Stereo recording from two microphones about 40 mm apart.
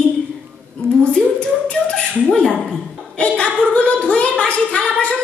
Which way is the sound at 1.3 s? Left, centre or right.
Left.